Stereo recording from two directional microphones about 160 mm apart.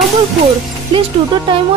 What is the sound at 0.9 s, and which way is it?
Speech, 30° right (ahead or behind).